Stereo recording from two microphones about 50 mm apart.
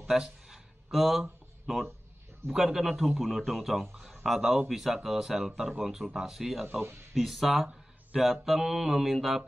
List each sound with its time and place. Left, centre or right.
0.2 s a sound: centre
2.4 s music: centre
3.9 s speech: centre
6.6 s speech: right
7.2 s music: centre